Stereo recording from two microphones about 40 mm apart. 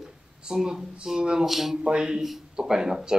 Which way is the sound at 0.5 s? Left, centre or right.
Centre.